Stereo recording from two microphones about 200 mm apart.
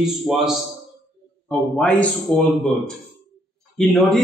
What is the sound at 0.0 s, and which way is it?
Speech, centre (ahead or behind).